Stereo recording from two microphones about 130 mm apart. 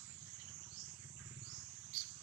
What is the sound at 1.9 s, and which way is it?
Cricket, 15° right (ahead or behind).